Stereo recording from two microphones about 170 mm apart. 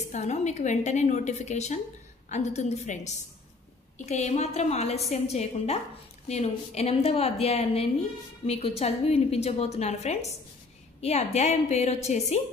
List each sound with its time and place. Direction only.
0.1 s a woman's voice: 40° left (ahead or behind)